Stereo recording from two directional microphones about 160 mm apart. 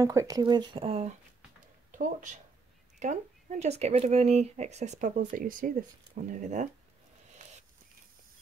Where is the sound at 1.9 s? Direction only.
55° right (ahead or behind).